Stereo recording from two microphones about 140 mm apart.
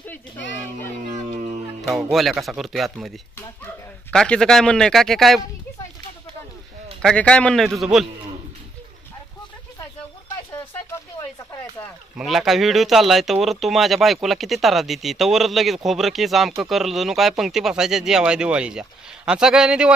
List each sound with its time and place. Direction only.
1.8 s speech: centre (ahead or behind)
7.0 s speech: 5° left (ahead or behind)
10.5 s a sound: 20° left (ahead or behind)
12.2 s speech: 5° right (ahead or behind)